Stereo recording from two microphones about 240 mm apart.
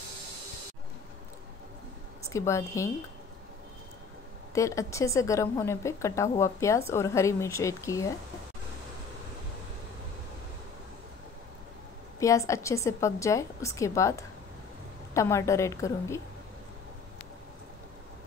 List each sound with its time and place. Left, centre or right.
2.2 s a woman's voice: centre
4.6 s a woman's voice: centre
12.2 s a woman's voice: centre